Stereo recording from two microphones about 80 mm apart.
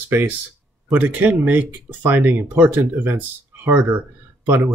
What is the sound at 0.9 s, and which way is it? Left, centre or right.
Speech, right.